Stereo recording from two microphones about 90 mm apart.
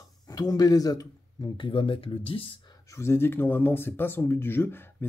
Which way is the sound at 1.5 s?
65° left (ahead or behind).